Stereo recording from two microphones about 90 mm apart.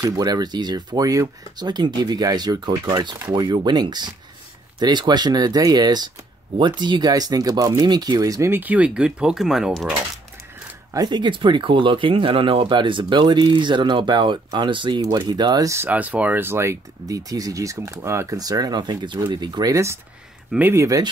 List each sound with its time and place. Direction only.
0.0 s speech: 45° right (ahead or behind)
8.5 s speech: 20° right (ahead or behind)
10.9 s speech: 50° right (ahead or behind)
15.9 s speech: 15° right (ahead or behind)
17.1 s speech: 40° right (ahead or behind)
18.4 s speech: 45° right (ahead or behind)
19.7 s speech: 30° right (ahead or behind)